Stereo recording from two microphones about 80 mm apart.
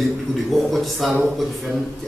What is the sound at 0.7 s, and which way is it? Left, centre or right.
Speech, centre.